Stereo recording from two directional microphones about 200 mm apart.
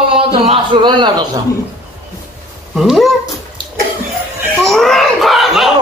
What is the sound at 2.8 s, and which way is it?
Speech, centre (ahead or behind).